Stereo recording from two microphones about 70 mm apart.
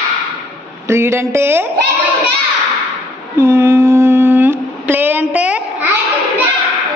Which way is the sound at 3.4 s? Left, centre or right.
Right.